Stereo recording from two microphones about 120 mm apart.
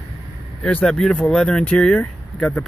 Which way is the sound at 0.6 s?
10° left (ahead or behind).